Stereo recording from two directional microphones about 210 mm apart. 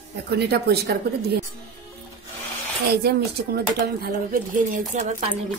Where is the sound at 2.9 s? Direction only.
50° right (ahead or behind).